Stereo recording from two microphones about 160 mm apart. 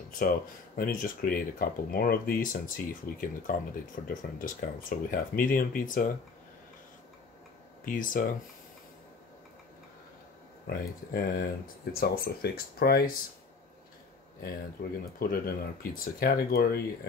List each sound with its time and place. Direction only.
0.7 s speech: 65° left (ahead or behind)
7.8 s speech: 60° left (ahead or behind)
10.7 s speech: 65° left (ahead or behind)
14.4 s speech: 75° left (ahead or behind)